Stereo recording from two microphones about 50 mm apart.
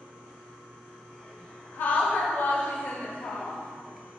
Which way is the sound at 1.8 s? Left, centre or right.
Left.